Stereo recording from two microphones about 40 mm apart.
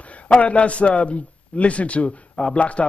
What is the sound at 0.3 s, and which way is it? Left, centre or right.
A man's voice, left.